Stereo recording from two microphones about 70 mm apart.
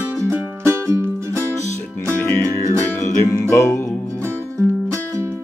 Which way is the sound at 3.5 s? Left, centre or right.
Left.